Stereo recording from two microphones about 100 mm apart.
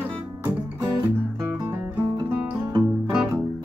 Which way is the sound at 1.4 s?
20° right (ahead or behind).